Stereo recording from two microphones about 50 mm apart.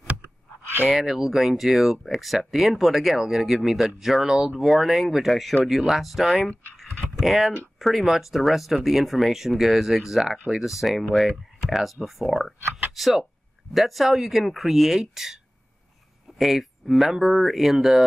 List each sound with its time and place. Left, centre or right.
0.8 s speech: centre
6.8 s computer keyboard: centre
7.8 s speech: centre